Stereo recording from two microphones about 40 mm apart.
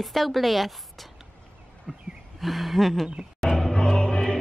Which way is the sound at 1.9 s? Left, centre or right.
Centre.